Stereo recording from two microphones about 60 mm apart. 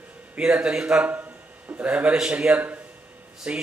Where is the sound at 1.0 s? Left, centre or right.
Right.